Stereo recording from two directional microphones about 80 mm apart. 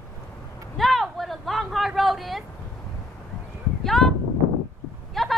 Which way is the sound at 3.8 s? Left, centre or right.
Centre.